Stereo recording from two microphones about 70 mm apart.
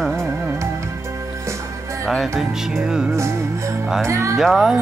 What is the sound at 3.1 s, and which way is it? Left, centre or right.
Music, right.